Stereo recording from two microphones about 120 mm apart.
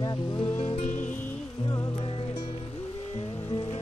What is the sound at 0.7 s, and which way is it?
Music, 90° left.